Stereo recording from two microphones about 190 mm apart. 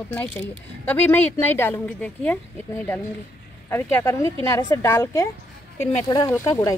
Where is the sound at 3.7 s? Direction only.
15° left (ahead or behind).